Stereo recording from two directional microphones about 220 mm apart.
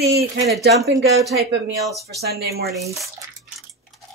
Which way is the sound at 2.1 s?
45° right (ahead or behind).